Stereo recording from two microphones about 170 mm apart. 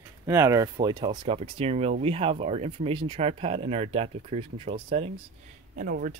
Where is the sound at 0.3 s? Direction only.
15° right (ahead or behind); by 5.1 s 35° right (ahead or behind).